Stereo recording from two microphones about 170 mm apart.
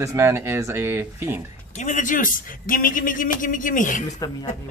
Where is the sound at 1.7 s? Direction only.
45° left (ahead or behind).